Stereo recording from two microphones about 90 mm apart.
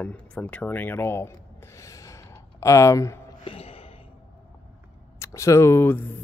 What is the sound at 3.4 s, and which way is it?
Gasp, 90° left.